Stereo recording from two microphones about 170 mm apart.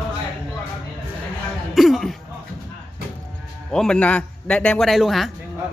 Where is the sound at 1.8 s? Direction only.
Centre (ahead or behind).